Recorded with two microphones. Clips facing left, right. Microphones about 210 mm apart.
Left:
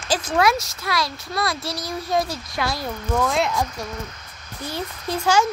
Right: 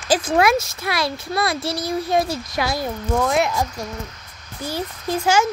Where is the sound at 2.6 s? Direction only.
10° right (ahead or behind).